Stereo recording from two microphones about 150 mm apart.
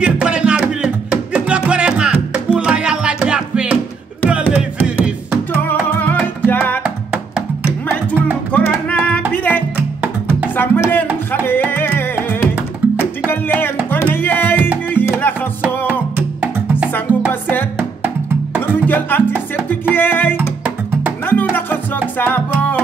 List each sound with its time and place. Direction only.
0.0 s music: 5° right (ahead or behind)
5.7 s music: 10° left (ahead or behind)
6.8 s music: 5° right (ahead or behind)
8.5 s music: 10° left (ahead or behind)
15.9 s music: 10° right (ahead or behind)
17.3 s music: 15° left (ahead or behind)
17.7 s music: 10° right (ahead or behind)
18.6 s music: 15° left (ahead or behind)